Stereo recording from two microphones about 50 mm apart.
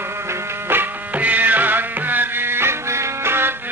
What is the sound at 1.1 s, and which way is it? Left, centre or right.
Music, right.